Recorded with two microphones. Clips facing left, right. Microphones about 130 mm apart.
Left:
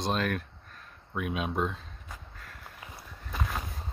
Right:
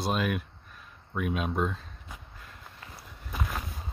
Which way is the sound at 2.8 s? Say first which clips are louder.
Left 1 dB; 15° left (ahead or behind).